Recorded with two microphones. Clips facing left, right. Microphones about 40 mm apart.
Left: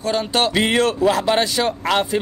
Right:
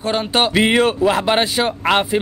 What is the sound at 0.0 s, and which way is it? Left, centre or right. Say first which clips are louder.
Speech: right 1 dB; right.